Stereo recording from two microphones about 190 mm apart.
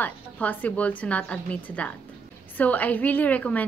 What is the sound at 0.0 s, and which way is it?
A woman's voice, 10° left (ahead or behind).